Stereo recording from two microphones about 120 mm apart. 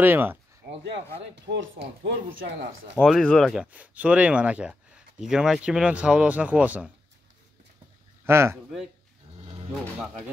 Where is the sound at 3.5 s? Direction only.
10° right (ahead or behind).